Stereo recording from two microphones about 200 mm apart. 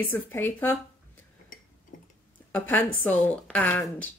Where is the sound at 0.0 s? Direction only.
10° left (ahead or behind).